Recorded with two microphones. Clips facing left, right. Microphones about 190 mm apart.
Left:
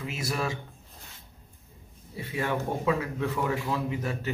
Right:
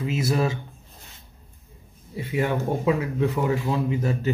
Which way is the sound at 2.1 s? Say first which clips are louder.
Right 5 dB; 20° right (ahead or behind).